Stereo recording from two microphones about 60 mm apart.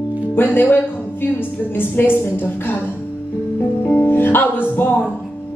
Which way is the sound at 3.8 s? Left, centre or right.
Left.